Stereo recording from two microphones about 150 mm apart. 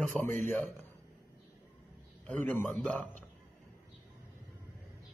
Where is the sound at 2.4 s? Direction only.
10° left (ahead or behind).